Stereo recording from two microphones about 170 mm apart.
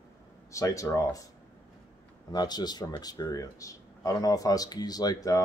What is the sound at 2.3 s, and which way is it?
Speech, 25° left (ahead or behind).